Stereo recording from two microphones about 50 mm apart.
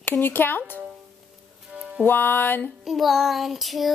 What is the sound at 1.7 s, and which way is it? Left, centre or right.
Music, right.